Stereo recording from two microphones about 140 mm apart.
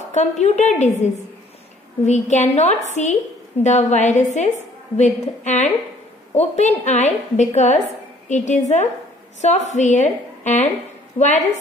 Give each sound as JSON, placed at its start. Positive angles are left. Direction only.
{"t": 0.1, "sound": "a woman's voice", "side_deg": 55}